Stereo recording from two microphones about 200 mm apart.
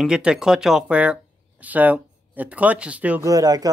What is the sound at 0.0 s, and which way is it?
Speech, 5° right (ahead or behind).